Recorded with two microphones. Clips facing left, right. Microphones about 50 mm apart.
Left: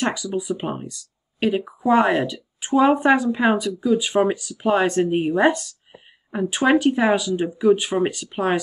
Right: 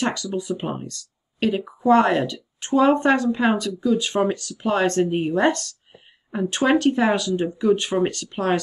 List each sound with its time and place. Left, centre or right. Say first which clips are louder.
0.0 s speech: left 1 dB; centre